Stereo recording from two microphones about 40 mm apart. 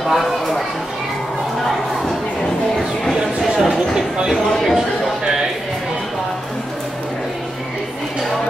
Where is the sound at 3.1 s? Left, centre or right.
Centre.